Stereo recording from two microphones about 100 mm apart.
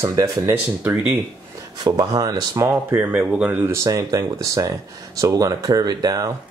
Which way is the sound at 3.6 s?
30° right (ahead or behind).